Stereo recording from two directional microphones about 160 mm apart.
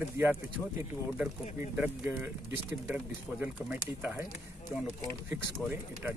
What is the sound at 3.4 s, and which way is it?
Speech, 10° right (ahead or behind).